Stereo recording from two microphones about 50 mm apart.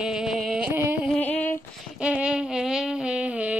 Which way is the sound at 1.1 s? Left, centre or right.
Left.